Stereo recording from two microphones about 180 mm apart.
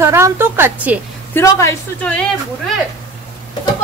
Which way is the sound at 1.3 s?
15° left (ahead or behind).